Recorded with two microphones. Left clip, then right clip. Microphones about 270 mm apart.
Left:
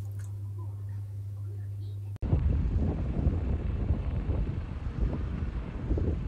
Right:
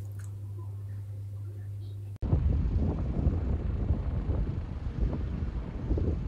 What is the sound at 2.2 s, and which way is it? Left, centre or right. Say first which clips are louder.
Vehicle: even; centre.